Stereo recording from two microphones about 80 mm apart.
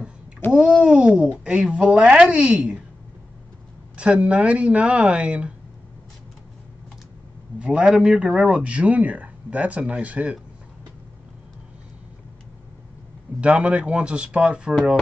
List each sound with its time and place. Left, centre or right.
0.5 s a woman's voice: centre
3.9 s speech: centre
7.5 s a man's voice: centre
13.4 s speech: centre